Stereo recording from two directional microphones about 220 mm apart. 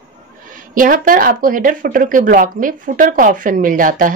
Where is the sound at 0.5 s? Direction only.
40° right (ahead or behind).